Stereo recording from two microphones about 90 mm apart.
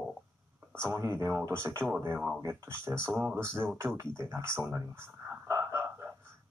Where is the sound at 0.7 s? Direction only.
30° right (ahead or behind).